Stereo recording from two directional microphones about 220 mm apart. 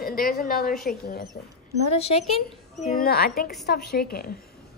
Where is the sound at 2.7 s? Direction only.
35° left (ahead or behind).